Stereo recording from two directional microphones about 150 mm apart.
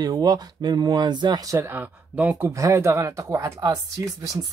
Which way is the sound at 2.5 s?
20° right (ahead or behind).